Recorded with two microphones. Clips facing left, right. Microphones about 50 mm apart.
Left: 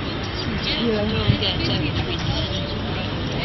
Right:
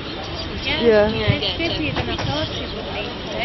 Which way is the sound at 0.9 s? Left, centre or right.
Right.